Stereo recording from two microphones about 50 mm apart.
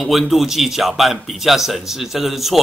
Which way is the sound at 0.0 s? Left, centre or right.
Centre.